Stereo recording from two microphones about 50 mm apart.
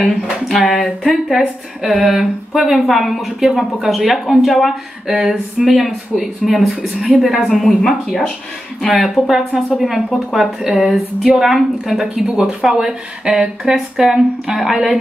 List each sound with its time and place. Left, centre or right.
0.5 s speech: centre
5.3 s a sound: centre
5.8 s speech: centre